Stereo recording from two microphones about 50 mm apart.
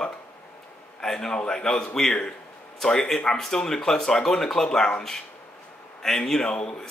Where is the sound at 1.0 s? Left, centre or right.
Centre.